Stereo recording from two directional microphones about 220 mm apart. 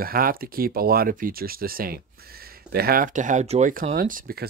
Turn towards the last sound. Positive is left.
turn(degrees=-45)  # may be behind; listen again after turning